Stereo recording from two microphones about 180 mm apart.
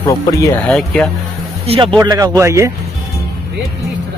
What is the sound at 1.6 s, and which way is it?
Speech, 30° right (ahead or behind).